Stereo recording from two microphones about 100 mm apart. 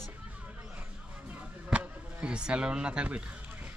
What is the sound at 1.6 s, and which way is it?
Speech, 10° right (ahead or behind).